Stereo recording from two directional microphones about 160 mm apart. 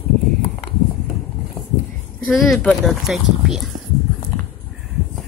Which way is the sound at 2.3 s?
Centre (ahead or behind).